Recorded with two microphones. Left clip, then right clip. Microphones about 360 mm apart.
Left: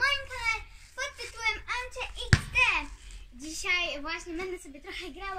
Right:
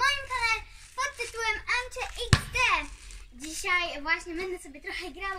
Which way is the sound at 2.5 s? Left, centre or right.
Centre.